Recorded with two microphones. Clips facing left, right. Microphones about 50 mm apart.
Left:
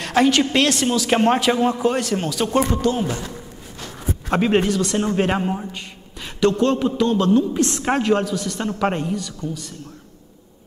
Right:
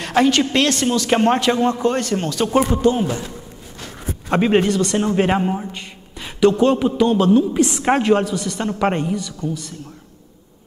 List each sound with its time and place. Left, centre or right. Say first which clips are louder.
0.0 s a man's voice: right 1 dB; centre
2.8 s a man's voice: right 4 dB; centre
4.3 s a man's voice: right 2 dB; centre